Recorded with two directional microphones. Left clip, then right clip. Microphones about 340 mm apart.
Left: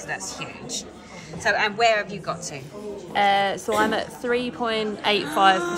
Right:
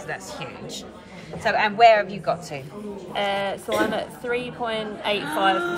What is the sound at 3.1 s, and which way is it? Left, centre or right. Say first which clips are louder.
A woman's voice: left 5 dB; left.